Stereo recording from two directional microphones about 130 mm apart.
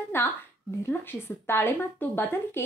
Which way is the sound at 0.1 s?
20° left (ahead or behind).